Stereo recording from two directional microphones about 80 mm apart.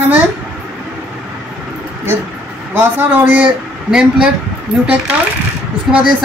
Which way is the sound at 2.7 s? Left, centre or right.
Right.